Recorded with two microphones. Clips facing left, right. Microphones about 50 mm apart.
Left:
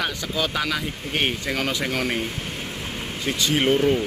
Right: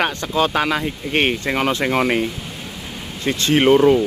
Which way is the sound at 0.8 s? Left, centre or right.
Right.